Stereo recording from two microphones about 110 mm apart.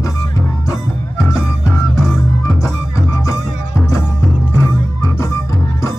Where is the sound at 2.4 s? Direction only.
30° left (ahead or behind).